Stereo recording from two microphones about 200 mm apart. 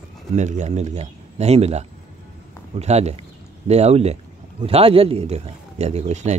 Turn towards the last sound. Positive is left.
turn(degrees=-35)  # may be behind; listen again after turning